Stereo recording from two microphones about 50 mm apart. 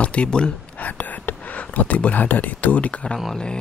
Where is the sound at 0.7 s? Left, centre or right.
Left.